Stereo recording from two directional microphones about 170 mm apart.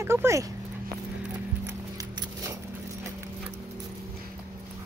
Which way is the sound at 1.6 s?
20° right (ahead or behind).